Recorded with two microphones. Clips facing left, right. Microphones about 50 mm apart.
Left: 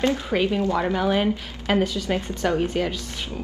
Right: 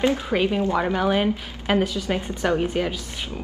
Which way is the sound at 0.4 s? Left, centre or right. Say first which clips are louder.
Left 1 dB; right.